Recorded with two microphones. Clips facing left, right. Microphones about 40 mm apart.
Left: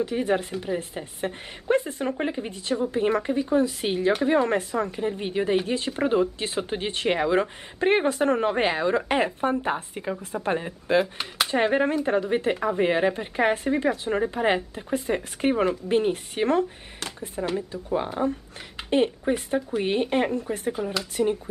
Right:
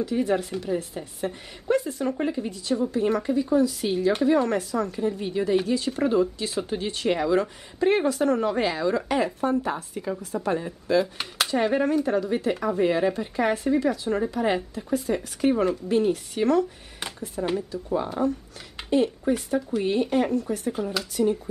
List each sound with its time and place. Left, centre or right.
0.0 s speech: left
18.9 s speech: left